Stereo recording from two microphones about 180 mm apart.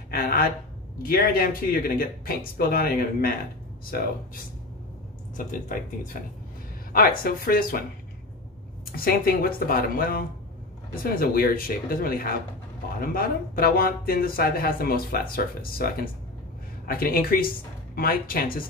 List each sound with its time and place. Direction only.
0.1 s speech: 55° left (ahead or behind)
5.4 s speech: 50° left (ahead or behind)
8.9 s speech: 55° left (ahead or behind)